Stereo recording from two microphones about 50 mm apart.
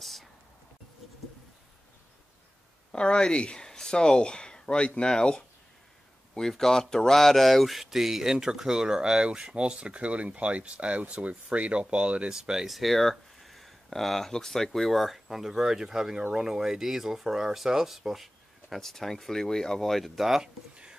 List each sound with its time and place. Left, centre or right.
0.0 s rain: centre
2.9 s speech: centre; by 12.4 s right
12.4 s speech: centre
12.7 s speech: centre